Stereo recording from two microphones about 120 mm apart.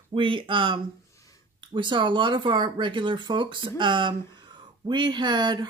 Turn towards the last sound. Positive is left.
turn(degrees=-40)  # may be behind; listen again after turning